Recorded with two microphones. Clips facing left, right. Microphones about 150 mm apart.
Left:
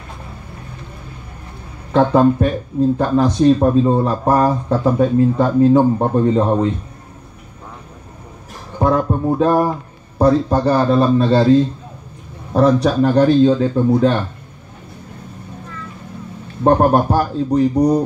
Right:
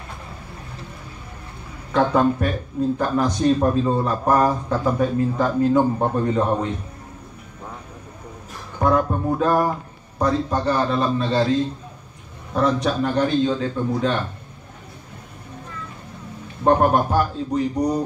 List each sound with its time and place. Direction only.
1.9 s speech: 30° left (ahead or behind)
8.7 s speech: 25° left (ahead or behind)
12.5 s speech: 35° left (ahead or behind)
16.6 s speech: 35° left (ahead or behind)